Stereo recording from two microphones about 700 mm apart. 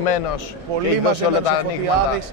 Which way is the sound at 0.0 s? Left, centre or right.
Left.